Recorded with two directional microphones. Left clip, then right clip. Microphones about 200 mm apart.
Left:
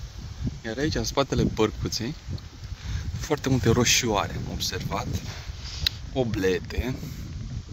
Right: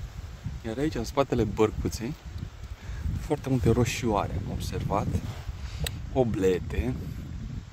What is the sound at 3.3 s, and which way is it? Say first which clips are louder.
Speech: left 3 dB; 5° left (ahead or behind).